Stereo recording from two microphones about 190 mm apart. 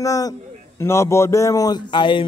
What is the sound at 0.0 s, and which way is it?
Speech, 20° left (ahead or behind).